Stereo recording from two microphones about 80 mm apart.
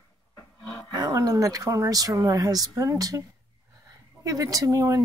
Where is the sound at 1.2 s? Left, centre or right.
Right.